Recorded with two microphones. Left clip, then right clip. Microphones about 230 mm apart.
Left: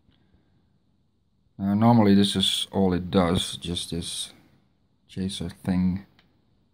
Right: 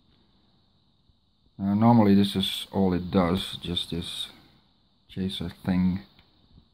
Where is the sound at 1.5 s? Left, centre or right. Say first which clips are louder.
Left 1 dB; centre.